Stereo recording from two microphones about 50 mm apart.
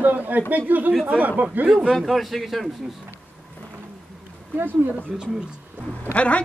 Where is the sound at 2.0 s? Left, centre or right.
Centre.